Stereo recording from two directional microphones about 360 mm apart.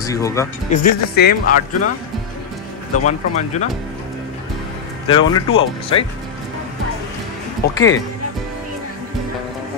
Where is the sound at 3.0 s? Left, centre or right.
Centre.